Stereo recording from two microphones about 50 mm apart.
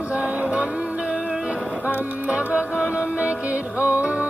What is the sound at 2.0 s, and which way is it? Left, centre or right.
Music, right.